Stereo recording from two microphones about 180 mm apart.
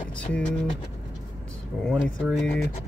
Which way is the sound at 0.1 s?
5° left (ahead or behind).